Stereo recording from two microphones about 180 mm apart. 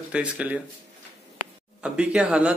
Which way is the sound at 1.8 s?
5° right (ahead or behind).